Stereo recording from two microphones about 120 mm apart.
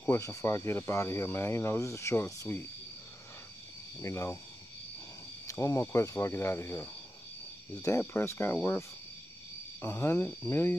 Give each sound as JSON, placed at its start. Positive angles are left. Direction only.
{"t": 0.0, "sound": "speech", "side_deg": 25}
{"t": 4.0, "sound": "speech", "side_deg": 25}
{"t": 5.5, "sound": "speech", "side_deg": 25}
{"t": 9.8, "sound": "speech", "side_deg": 20}